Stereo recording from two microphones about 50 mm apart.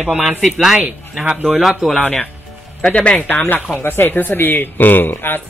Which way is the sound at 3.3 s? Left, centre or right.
Left.